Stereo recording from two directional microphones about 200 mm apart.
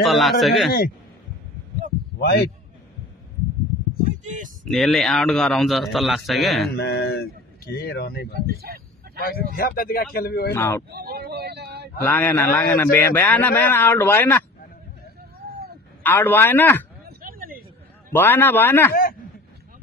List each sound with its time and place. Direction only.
0.0 s a man's voice: centre (ahead or behind)
2.1 s a man's voice: 55° left (ahead or behind)
4.2 s speech: 40° right (ahead or behind)
4.6 s a man's voice: centre (ahead or behind)
6.7 s speech: 55° left (ahead or behind)
8.6 s a sound: 50° right (ahead or behind)
9.6 s speech: 45° left (ahead or behind)
10.5 s a man's voice: 10° left (ahead or behind)
10.9 s a sound: 50° right (ahead or behind)
12.0 s a man's voice: 10° left (ahead or behind)
16.0 s a man's voice: 10° left (ahead or behind)
17.2 s a sound: 45° right (ahead or behind)
18.1 s a man's voice: 10° left (ahead or behind)